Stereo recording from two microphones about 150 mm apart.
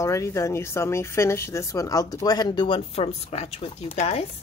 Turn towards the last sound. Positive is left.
turn(degrees=45)  # may be behind; listen again after turning